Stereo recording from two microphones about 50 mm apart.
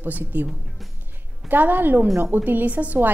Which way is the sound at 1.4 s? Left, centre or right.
Right.